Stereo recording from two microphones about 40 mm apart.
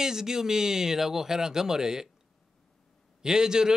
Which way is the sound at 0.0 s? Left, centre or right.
Centre.